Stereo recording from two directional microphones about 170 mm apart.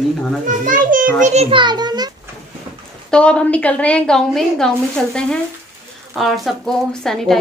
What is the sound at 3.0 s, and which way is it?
A woman's voice, 5° left (ahead or behind).